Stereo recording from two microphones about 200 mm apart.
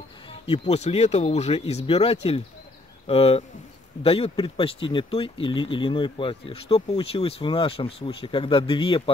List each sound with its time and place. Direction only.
0.3 s speech: 30° left (ahead or behind)